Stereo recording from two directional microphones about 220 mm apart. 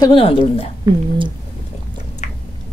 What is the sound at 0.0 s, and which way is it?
Speech, 25° left (ahead or behind).